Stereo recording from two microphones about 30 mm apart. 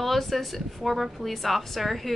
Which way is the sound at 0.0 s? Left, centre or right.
Centre.